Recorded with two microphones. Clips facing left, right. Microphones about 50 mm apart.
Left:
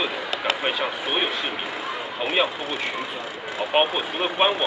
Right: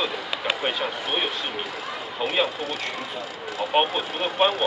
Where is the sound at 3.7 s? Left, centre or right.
Left.